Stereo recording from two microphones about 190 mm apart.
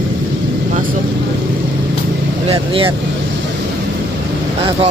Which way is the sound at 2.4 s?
30° right (ahead or behind).